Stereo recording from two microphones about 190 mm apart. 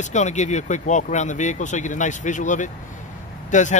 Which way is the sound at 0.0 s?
40° left (ahead or behind).